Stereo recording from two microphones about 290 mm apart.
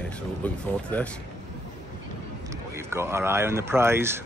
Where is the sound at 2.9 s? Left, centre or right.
Centre.